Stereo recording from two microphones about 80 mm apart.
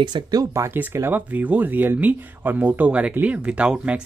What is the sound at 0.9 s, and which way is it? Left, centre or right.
Speech, right.